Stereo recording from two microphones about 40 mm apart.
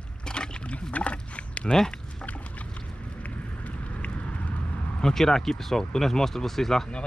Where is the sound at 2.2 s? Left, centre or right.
Left.